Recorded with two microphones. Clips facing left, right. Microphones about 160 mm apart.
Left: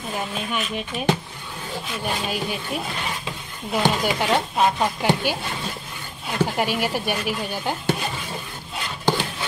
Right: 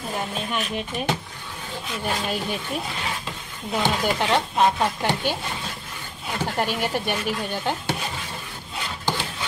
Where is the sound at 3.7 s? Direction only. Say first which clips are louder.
Left 2 dB; 10° left (ahead or behind).